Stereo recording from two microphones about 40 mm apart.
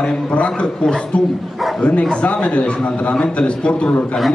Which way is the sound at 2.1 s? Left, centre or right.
Left.